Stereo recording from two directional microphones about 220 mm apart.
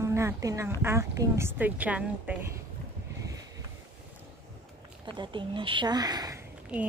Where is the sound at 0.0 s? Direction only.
10° right (ahead or behind).